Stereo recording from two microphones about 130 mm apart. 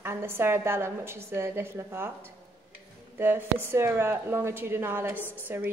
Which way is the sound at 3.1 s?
15° right (ahead or behind).